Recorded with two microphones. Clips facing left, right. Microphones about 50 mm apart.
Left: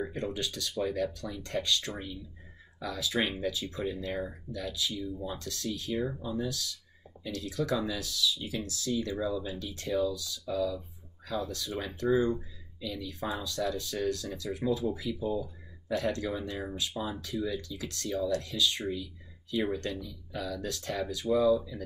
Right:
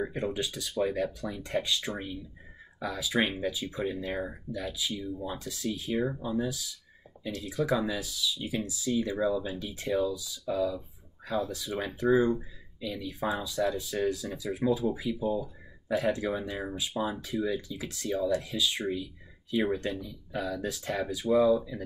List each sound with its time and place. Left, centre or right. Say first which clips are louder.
0.0 s speech: right 2 dB; centre